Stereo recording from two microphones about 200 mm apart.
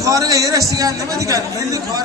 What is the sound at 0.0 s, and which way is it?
A man's voice, 15° right (ahead or behind).